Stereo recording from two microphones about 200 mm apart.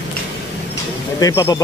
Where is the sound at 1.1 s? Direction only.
15° left (ahead or behind).